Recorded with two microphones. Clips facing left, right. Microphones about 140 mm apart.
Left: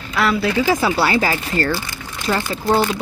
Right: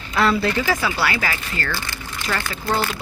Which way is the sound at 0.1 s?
Centre (ahead or behind).